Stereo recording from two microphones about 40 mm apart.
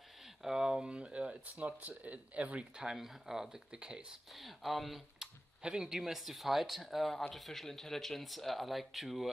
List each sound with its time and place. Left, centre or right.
0.4 s a sound: centre
0.8 s a sound: right
1.4 s speech: right
2.8 s speech: centre
4.4 s speech: centre
5.6 s speech: centre